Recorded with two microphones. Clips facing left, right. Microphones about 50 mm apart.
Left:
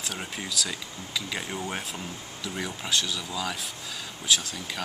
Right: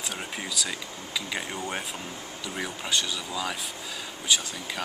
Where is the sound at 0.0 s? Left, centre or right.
Centre.